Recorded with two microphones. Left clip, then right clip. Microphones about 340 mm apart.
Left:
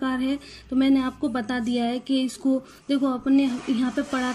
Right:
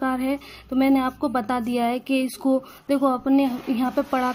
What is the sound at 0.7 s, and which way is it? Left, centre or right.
Speech, centre.